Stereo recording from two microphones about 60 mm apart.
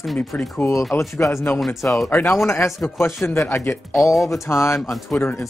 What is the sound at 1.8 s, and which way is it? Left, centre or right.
Speech, left.